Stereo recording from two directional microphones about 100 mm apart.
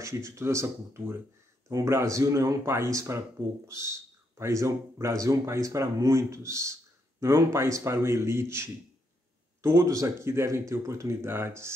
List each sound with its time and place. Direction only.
0.0 s speech: 30° right (ahead or behind)